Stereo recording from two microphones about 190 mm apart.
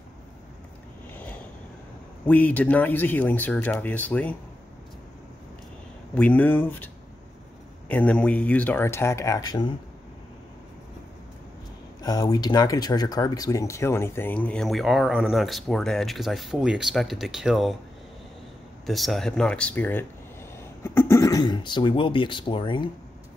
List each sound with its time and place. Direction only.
2.2 s speech: 10° left (ahead or behind)
6.1 s speech: 10° left (ahead or behind)
7.9 s speech: 5° left (ahead or behind)
12.0 s speech: 20° left (ahead or behind); by 17.7 s centre (ahead or behind)
18.9 s speech: centre (ahead or behind); by 22.8 s 25° left (ahead or behind)